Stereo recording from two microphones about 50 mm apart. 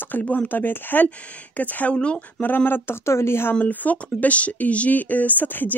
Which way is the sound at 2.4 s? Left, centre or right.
Left.